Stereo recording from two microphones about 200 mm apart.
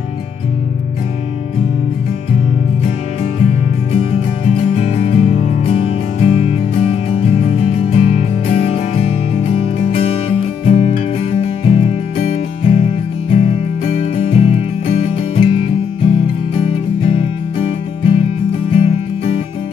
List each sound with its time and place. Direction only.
3.9 s music: 30° left (ahead or behind)